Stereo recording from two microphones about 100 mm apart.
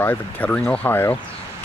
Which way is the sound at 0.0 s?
15° left (ahead or behind).